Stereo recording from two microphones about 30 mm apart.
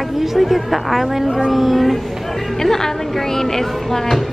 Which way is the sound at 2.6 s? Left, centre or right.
Centre.